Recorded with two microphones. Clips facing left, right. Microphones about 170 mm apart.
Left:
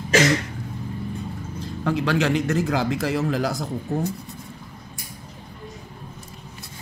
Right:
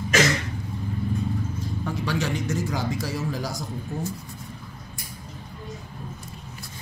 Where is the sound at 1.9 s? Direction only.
70° left (ahead or behind).